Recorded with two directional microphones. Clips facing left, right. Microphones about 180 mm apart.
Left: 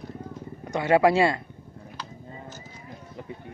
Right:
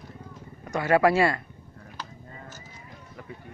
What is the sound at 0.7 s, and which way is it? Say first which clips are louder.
Speech: left 1 dB; 20° left (ahead or behind).